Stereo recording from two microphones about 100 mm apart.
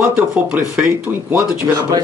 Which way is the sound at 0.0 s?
10° right (ahead or behind).